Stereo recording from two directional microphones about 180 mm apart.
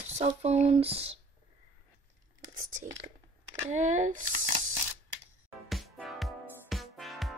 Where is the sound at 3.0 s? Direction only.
40° right (ahead or behind).